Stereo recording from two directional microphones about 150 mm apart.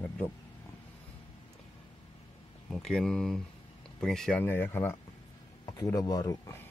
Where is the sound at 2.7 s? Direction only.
5° left (ahead or behind); by 6.7 s 20° left (ahead or behind).